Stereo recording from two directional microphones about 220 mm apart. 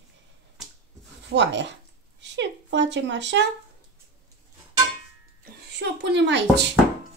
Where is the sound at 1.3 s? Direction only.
55° right (ahead or behind).